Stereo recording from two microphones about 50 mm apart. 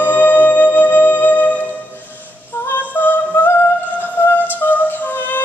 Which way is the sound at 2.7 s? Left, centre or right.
Left.